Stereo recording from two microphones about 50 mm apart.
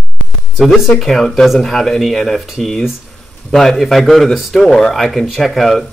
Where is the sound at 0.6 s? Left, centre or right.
Centre.